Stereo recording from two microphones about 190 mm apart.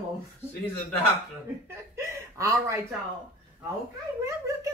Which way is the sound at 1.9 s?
15° right (ahead or behind).